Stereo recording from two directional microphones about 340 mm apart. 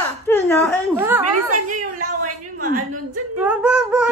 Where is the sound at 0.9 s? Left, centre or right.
Centre.